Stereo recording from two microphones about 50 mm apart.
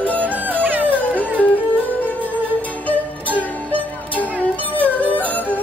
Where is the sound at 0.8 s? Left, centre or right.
Left.